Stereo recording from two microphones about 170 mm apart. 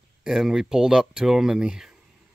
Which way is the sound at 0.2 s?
Centre (ahead or behind).